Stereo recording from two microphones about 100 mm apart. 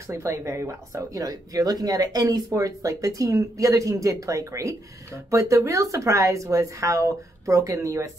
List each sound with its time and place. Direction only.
0.0 s speech: 30° right (ahead or behind)